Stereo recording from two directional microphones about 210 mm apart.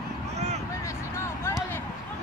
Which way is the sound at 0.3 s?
30° right (ahead or behind).